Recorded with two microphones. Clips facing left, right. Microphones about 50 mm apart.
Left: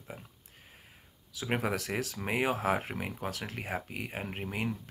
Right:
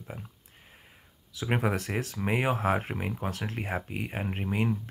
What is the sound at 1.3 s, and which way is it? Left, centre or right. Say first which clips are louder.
Speech: right 3 dB; centre.